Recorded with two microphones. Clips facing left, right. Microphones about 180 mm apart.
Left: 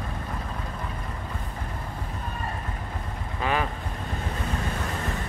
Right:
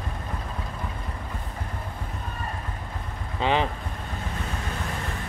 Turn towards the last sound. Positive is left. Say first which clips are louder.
# right 3 dB
turn(degrees=-25)  # may be behind; listen again after turning